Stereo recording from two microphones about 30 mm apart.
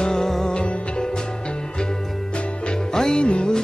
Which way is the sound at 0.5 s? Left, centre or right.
Left.